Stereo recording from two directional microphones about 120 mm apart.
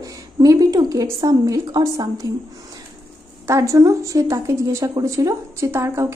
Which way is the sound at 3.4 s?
25° right (ahead or behind).